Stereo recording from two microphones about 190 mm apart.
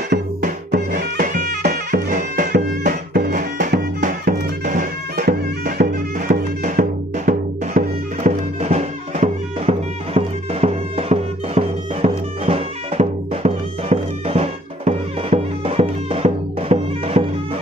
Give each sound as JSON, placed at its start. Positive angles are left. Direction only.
{"t": 0.4, "sound": "music", "side_deg": -50}
{"t": 5.2, "sound": "bagpipes", "side_deg": -55}
{"t": 6.1, "sound": "music", "side_deg": -40}
{"t": 8.5, "sound": "music", "side_deg": -35}